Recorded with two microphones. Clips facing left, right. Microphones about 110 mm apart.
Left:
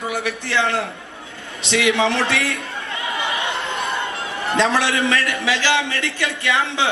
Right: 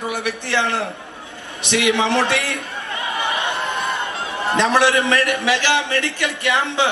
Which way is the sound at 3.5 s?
25° left (ahead or behind).